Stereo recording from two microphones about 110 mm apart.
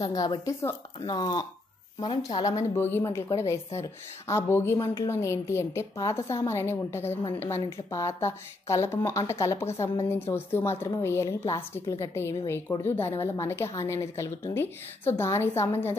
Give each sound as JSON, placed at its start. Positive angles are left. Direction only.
{"t": 0.0, "sound": "speech", "side_deg": 35}
{"t": 1.0, "sound": "speech", "side_deg": 40}
{"t": 2.7, "sound": "a woman's voice", "side_deg": 20}